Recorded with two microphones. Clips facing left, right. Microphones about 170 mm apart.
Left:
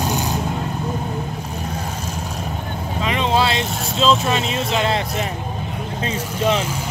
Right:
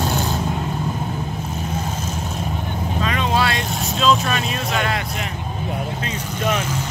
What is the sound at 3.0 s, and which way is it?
Vehicle, 20° left (ahead or behind).